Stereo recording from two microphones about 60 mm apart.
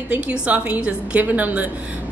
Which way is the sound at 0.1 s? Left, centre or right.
Right.